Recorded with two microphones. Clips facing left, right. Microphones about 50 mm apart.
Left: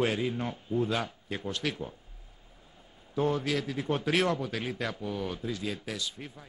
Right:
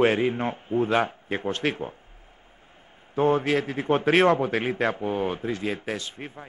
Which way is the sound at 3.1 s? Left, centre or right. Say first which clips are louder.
Right 7 dB; right.